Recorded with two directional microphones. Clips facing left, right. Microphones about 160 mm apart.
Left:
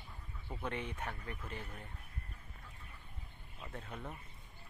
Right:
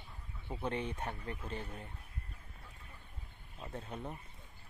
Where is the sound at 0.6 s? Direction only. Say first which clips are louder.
Right 3 dB; 25° right (ahead or behind).